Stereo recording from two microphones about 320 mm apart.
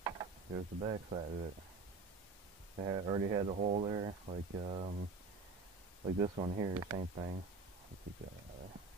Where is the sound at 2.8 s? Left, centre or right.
Centre.